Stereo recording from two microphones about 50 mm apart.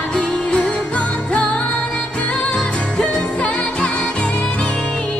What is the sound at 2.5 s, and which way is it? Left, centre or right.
Music, centre.